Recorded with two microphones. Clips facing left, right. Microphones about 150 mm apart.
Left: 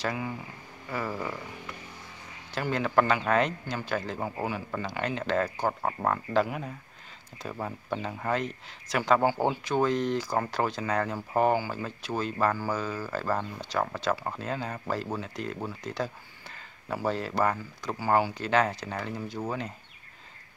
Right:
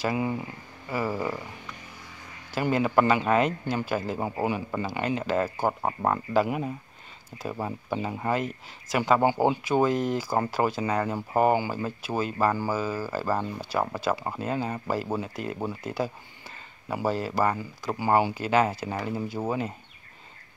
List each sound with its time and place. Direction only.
0.8 s speech: 10° right (ahead or behind)
2.6 s speech: 10° right (ahead or behind)
4.8 s speech: 5° right (ahead or behind)
9.2 s speech: 15° right (ahead or behind)
9.7 s speech: 5° right (ahead or behind)
17.9 s speech: 15° right (ahead or behind)